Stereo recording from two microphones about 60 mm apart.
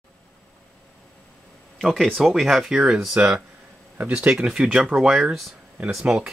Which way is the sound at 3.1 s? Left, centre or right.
Right.